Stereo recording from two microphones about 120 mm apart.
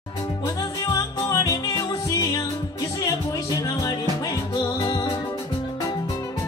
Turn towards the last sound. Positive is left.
turn(degrees=30)  # may be behind; listen again after turning